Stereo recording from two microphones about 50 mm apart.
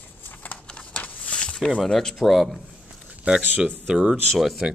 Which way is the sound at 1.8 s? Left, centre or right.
Centre.